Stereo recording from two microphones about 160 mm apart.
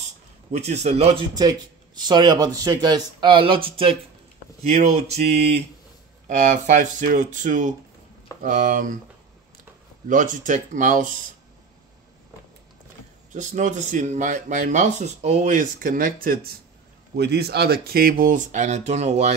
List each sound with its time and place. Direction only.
0.5 s speech: 45° right (ahead or behind)
1.3 s speech: 25° right (ahead or behind); by 8.9 s 55° right (ahead or behind)
10.0 s speech: 55° right (ahead or behind)
13.3 s speech: 50° right (ahead or behind)
17.2 s speech: 90° right; by 19.3 s 45° right (ahead or behind)